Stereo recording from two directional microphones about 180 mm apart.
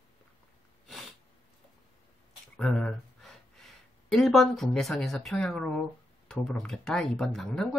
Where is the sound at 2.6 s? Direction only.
5° left (ahead or behind).